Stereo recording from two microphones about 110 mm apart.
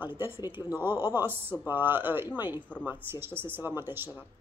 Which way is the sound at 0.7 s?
20° right (ahead or behind).